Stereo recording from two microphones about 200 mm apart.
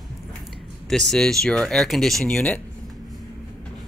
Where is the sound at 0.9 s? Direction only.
Centre (ahead or behind).